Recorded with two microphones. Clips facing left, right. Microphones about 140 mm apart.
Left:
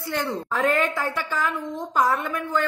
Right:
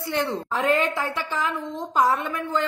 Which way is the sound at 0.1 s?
25° right (ahead or behind).